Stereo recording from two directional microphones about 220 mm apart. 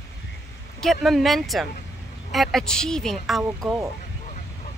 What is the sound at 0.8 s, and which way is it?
Speech, centre (ahead or behind).